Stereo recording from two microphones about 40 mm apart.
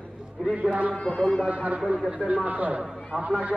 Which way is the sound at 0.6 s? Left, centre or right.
Right.